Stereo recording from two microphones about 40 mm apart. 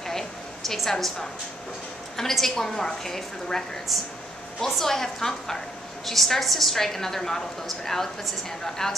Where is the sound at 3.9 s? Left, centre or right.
Centre.